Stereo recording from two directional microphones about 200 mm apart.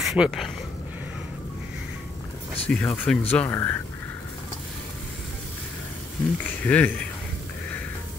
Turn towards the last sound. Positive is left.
turn(degrees=5)  # may be behind; listen again after turning